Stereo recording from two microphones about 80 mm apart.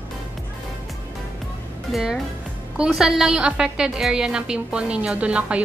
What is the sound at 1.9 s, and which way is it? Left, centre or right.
A woman's voice, centre.